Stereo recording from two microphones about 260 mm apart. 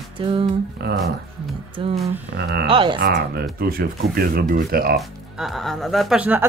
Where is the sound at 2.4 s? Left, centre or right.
Right.